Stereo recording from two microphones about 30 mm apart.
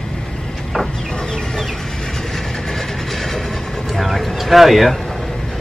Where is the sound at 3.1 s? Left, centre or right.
Centre.